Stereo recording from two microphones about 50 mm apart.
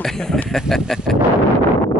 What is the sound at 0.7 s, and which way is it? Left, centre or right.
Artillery fire, centre.